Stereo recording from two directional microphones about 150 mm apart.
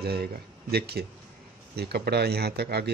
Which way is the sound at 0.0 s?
90° right.